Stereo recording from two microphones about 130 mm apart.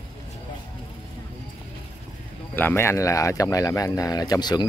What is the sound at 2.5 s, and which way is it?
Speech, 15° left (ahead or behind).